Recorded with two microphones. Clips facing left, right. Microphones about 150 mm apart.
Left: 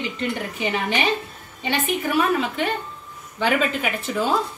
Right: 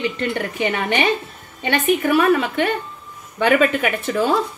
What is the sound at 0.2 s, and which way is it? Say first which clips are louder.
Speech: right 4 dB; 65° right (ahead or behind).